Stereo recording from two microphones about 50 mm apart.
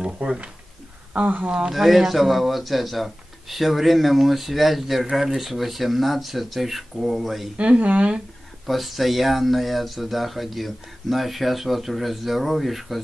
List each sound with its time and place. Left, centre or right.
0.0 s a sound: centre
1.1 s speech: right
1.7 s speech: centre
7.5 s speech: right
8.6 s speech: centre